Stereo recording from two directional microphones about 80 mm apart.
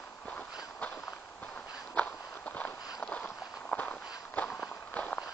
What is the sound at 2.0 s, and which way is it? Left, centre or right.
Walk, centre.